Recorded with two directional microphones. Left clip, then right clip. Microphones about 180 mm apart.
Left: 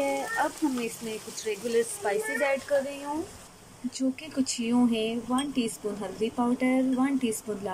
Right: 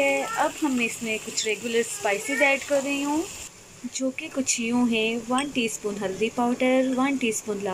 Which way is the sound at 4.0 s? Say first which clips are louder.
Right 2 dB; centre (ahead or behind).